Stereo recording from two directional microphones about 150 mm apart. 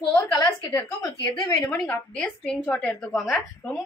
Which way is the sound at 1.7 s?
5° left (ahead or behind).